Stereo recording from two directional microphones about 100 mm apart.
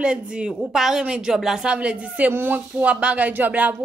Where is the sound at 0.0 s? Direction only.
10° right (ahead or behind).